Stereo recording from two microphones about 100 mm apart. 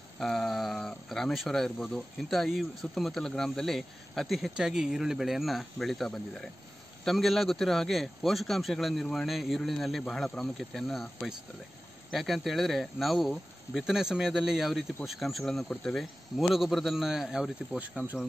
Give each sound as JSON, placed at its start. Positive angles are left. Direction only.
{"t": 0.2, "sound": "speech", "side_deg": 0}